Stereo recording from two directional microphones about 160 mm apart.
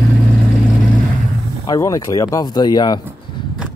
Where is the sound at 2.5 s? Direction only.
25° left (ahead or behind).